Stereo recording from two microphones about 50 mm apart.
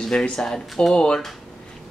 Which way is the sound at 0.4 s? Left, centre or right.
Centre.